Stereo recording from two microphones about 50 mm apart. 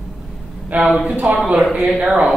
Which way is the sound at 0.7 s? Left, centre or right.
Right.